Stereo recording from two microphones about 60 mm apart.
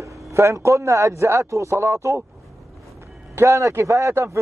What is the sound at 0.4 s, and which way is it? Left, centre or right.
A man's voice, right.